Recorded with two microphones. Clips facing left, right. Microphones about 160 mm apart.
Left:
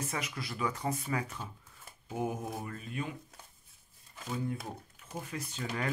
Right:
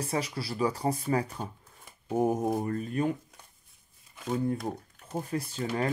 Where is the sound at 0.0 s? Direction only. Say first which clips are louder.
Right 6 dB; 35° right (ahead or behind).